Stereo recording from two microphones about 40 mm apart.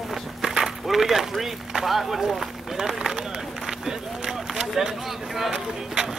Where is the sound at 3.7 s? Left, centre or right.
Centre.